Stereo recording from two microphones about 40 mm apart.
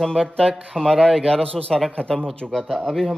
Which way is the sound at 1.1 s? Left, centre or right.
Centre.